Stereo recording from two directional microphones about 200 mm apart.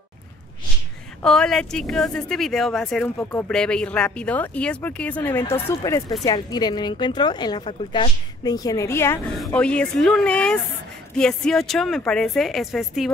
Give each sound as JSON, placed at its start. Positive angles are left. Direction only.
{"t": 1.2, "sound": "a woman's voice", "side_deg": 0}